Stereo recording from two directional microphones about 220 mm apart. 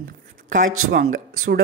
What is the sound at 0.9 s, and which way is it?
Speech, 45° right (ahead or behind).